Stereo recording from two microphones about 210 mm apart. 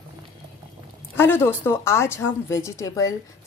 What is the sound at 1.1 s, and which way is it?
Speech, 10° left (ahead or behind).